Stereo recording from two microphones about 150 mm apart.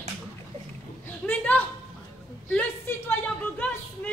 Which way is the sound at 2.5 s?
10° left (ahead or behind).